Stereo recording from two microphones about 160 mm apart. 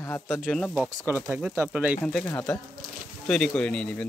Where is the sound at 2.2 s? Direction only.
20° left (ahead or behind).